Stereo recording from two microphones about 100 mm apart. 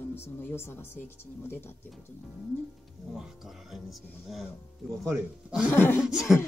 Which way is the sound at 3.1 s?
5° right (ahead or behind).